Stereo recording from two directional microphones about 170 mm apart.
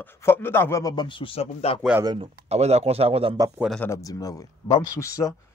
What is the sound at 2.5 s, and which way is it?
Speech, 40° right (ahead or behind).